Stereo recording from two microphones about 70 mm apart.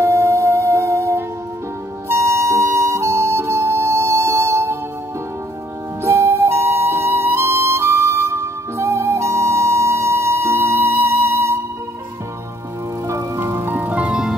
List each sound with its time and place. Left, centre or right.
0.0 s music: right
6.0 s flute: right
13.5 s music: right; by 14.3 s centre